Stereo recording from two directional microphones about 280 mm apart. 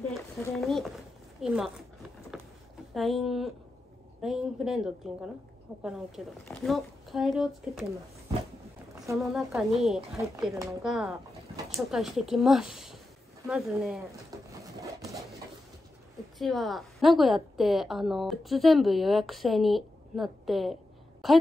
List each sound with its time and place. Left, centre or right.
0.1 s a woman's voice: centre
2.9 s a woman's voice: centre
9.2 s a woman's voice: centre
14.6 s wood: centre
16.3 s a woman's voice: centre